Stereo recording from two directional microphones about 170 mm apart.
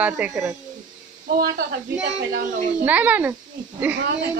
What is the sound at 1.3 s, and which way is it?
Speech, 65° right (ahead or behind).